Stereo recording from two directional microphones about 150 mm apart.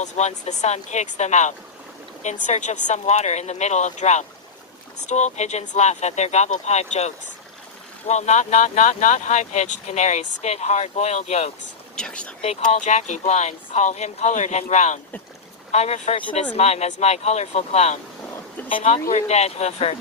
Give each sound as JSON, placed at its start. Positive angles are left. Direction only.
{"t": 0.0, "sound": "speech", "side_deg": 50}
{"t": 11.9, "sound": "speech", "side_deg": 5}
{"t": 12.4, "sound": "speech", "side_deg": 45}
{"t": 19.0, "sound": "speech", "side_deg": 50}